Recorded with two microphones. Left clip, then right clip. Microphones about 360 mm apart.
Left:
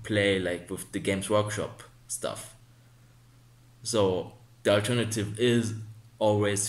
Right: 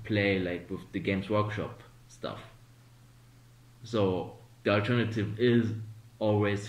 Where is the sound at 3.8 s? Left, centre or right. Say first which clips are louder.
Left 3 dB; centre.